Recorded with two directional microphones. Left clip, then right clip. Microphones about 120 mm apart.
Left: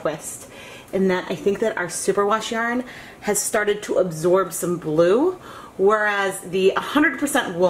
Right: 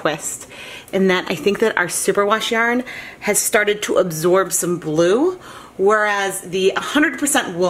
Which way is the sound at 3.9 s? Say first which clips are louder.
Right 1 dB; 55° right (ahead or behind).